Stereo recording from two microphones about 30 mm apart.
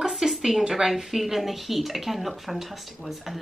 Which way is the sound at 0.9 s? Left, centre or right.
Centre.